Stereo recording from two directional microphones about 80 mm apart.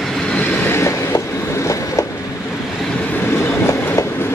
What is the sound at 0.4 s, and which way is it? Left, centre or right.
Train, left.